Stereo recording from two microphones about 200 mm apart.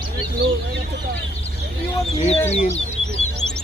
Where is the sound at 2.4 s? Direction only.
30° left (ahead or behind).